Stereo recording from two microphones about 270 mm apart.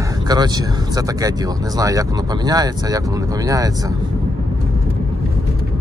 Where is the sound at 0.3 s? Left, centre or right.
Centre.